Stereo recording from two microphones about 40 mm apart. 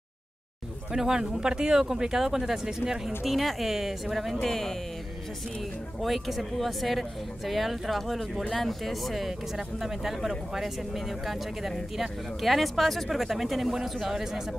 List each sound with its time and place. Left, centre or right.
0.9 s speech: centre
3.3 s speech: centre
4.4 s speech: centre
5.9 s speech: centre